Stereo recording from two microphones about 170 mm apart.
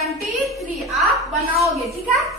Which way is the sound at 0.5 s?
Centre (ahead or behind).